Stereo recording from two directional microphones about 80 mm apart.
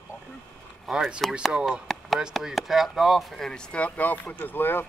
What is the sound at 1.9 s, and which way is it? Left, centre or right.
Chop, centre.